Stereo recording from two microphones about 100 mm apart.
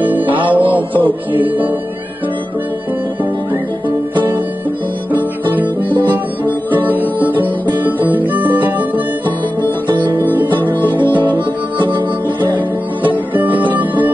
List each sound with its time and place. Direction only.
0.0 s music: 20° right (ahead or behind)
4.1 s music: 20° right (ahead or behind)
6.7 s music: 20° right (ahead or behind)
9.8 s guitar: 50° right (ahead or behind)
11.2 s music: 50° right (ahead or behind)
13.3 s music: 15° right (ahead or behind)